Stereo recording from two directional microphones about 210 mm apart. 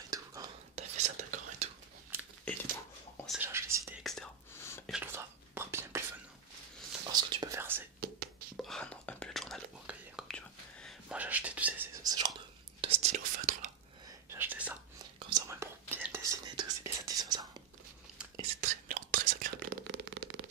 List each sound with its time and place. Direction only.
0.1 s whispering: 15° right (ahead or behind)
0.7 s whispering: 35° right (ahead or behind)
3.3 s whispering: 10° right (ahead or behind)
4.0 s whispering: centre (ahead or behind)
4.6 s whispering: 10° left (ahead or behind)
4.8 s whispering: 5° right (ahead or behind)
7.1 s whispering: 20° right (ahead or behind)
8.5 s whispering: 5° left (ahead or behind); by 12.3 s 20° right (ahead or behind)
12.8 s whispering: 30° right (ahead or behind)
14.3 s whispering: 10° right (ahead or behind)
15.1 s whispering: 20° right (ahead or behind)
18.6 s whispering: 35° right (ahead or behind)